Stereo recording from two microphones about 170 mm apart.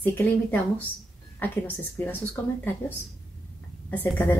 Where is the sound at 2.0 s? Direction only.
10° left (ahead or behind).